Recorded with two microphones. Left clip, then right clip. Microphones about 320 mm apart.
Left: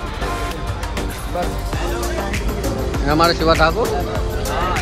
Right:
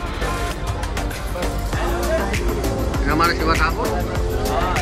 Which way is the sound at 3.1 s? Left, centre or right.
Centre.